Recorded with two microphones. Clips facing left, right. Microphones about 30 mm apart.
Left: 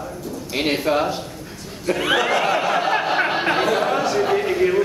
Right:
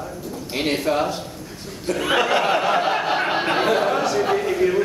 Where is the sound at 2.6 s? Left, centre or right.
Centre.